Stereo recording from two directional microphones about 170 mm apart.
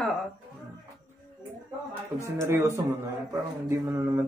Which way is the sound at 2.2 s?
15° right (ahead or behind).